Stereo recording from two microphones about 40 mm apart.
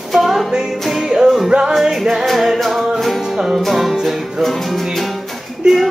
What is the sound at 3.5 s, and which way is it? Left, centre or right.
Music, centre.